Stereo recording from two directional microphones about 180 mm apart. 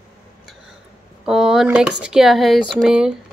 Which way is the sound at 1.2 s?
5° right (ahead or behind).